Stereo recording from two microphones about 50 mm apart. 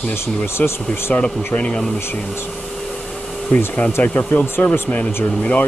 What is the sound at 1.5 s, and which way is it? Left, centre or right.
Speech, left.